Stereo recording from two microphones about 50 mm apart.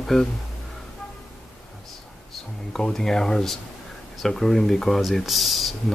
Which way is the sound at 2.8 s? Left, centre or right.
Centre.